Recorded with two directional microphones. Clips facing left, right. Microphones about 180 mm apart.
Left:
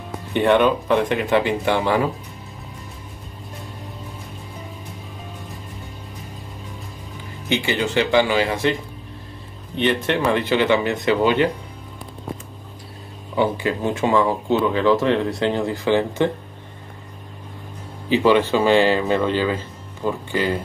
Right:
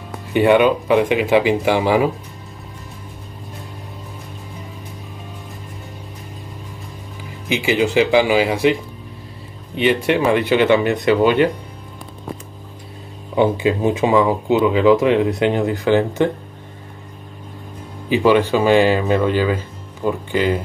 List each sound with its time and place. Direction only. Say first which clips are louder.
0.3 s speech: right 3 dB; 5° right (ahead or behind)
7.4 s speech: right 4 dB; 10° right (ahead or behind)
9.8 s speech: right 4 dB; 10° right (ahead or behind)
13.4 s speech: right 4 dB; 15° right (ahead or behind)
18.1 s speech: right 2 dB; 15° right (ahead or behind)